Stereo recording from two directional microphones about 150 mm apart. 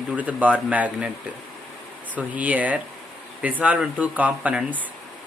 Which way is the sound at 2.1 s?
10° right (ahead or behind).